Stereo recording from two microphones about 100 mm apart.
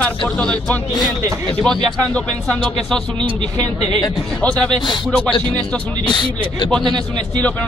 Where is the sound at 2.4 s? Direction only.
5° left (ahead or behind).